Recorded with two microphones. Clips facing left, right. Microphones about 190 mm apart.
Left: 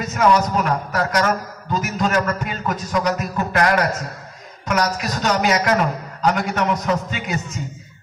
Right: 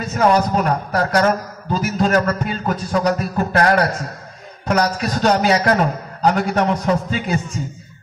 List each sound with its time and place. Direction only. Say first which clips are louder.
0.1 s a man's voice: right 2 dB; 40° right (ahead or behind)